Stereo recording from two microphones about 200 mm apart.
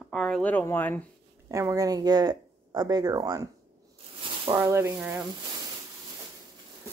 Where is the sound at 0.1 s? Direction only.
5° left (ahead or behind).